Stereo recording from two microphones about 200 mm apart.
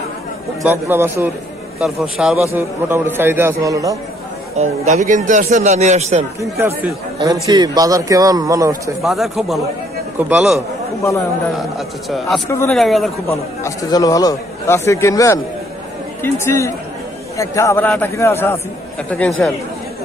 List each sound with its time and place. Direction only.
0.8 s a man's voice: 10° right (ahead or behind)
4.6 s a man's voice: 35° right (ahead or behind)
6.5 s a man's voice: 10° right (ahead or behind)
9.0 s a man's voice: centre (ahead or behind)
12.4 s speech: 15° left (ahead or behind)
12.7 s a man's voice: centre (ahead or behind)
13.3 s a man's voice: 15° left (ahead or behind)